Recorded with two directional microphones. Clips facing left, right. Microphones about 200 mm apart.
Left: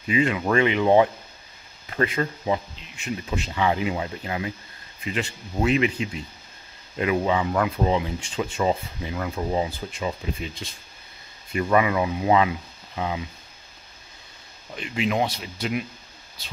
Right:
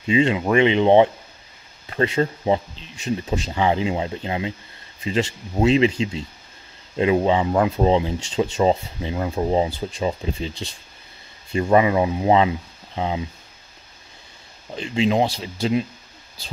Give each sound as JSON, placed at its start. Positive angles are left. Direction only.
{"t": 0.0, "sound": "speech", "side_deg": -25}
{"t": 14.7, "sound": "speech", "side_deg": -30}